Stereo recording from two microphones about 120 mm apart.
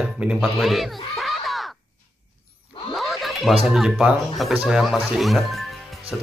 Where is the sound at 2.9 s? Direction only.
Centre (ahead or behind).